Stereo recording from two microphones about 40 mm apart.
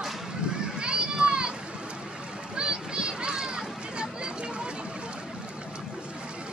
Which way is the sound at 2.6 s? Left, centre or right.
Right.